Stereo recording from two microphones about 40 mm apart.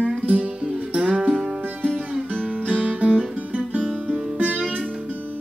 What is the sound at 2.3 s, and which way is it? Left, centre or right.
Guitar, right.